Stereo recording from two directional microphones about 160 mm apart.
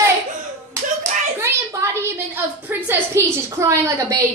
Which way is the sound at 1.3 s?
20° right (ahead or behind).